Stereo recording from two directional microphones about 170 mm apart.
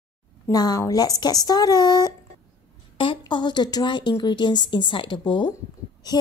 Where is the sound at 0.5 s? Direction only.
20° left (ahead or behind).